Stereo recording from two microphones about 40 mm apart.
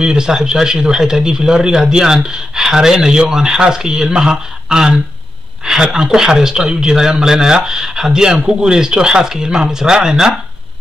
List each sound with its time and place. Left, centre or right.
0.0 s speech: centre